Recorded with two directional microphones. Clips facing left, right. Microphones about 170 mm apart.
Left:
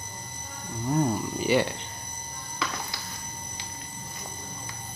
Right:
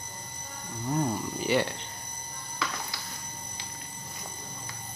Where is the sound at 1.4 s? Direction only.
5° left (ahead or behind).